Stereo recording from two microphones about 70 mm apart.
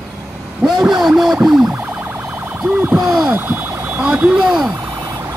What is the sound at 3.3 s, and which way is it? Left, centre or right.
Car alarm, right.